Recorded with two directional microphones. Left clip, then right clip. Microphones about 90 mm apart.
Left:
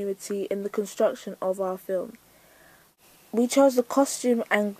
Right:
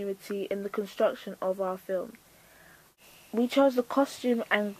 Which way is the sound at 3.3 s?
30° left (ahead or behind).